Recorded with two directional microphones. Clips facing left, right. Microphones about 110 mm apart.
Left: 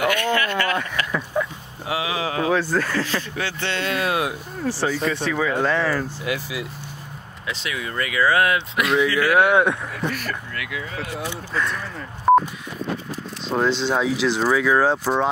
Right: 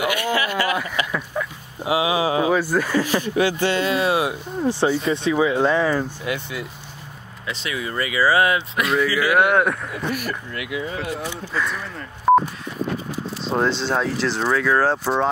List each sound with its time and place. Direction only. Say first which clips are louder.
0.0 s speech: left 1 dB; 10° right (ahead or behind)
4.6 s speech: right 3 dB; 20° right (ahead or behind)
6.2 s speech: even; centre (ahead or behind); by 11.0 s 25° right (ahead or behind)
11.1 s speech: even; centre (ahead or behind)
12.3 s telephone dialing: even; centre (ahead or behind)
13.7 s speech: left 1 dB; 15° left (ahead or behind)